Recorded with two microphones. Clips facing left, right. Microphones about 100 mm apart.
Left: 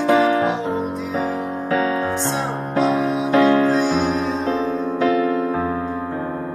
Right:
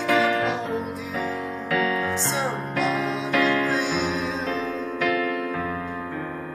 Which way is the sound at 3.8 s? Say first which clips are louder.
Left 6 dB; 50° left (ahead or behind).